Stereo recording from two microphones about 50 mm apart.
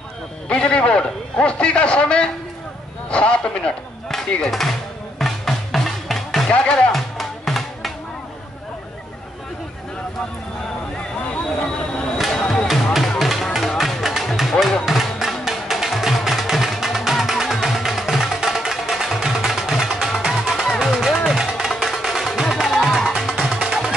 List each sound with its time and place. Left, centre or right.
0.5 s a man's voice: left
4.5 s speech: centre
5.2 s music: centre
6.5 s a man's voice: left
6.9 s music: centre
12.2 s music: centre